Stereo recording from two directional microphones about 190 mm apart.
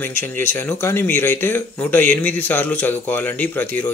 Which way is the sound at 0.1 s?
10° left (ahead or behind).